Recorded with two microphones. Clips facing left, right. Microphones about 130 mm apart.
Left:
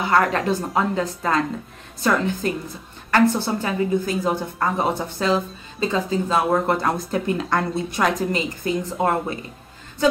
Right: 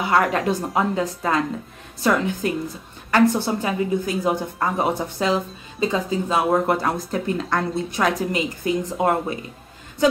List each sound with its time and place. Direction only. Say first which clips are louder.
0.0 s a woman's voice: even; 10° right (ahead or behind)
7.1 s speech: left 1 dB; centre (ahead or behind)
8.3 s a woman's voice: right 1 dB; 15° right (ahead or behind)